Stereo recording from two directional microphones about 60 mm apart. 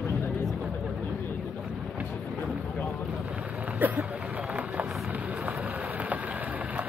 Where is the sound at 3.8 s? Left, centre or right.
Right.